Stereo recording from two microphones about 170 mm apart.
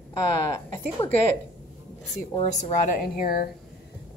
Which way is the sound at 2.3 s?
40° left (ahead or behind).